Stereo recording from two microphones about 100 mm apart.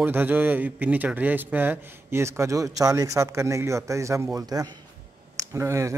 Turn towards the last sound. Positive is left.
turn(degrees=-30)  # may be behind; listen again after turning